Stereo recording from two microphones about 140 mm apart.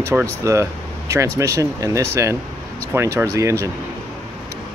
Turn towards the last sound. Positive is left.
turn(degrees=-20)  # may be behind; listen again after turning